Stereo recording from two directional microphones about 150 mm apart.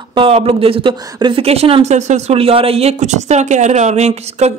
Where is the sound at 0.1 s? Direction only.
40° right (ahead or behind).